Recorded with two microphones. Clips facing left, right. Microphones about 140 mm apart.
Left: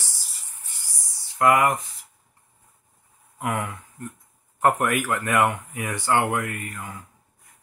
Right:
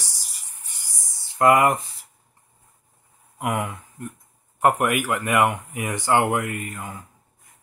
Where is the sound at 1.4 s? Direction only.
20° right (ahead or behind).